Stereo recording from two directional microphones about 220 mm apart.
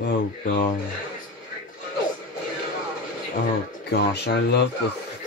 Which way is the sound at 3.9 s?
50° left (ahead or behind).